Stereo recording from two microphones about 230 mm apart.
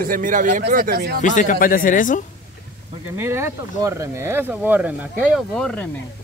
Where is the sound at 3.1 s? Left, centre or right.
Centre.